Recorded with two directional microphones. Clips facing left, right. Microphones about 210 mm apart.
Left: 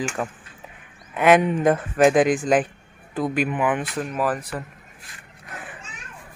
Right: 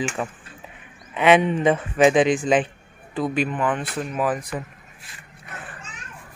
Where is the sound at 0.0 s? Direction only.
5° right (ahead or behind).